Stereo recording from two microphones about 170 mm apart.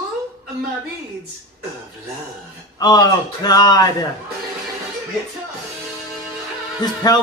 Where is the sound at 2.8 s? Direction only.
25° left (ahead or behind).